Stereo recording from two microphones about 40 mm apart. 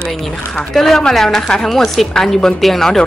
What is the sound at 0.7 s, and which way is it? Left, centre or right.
A woman's voice, centre.